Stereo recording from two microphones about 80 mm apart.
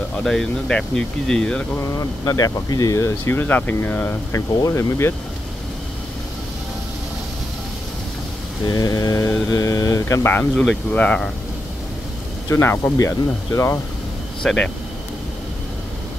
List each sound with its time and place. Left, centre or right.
0.2 s speech: centre
1.8 s speech: left
8.6 s mantra: left
10.2 s speech: left
10.5 s speech: centre
10.9 s speech: centre
12.4 s speech: left
12.9 s speech: left
14.4 s speech: centre